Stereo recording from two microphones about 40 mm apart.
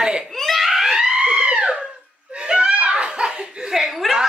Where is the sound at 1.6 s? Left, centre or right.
Centre.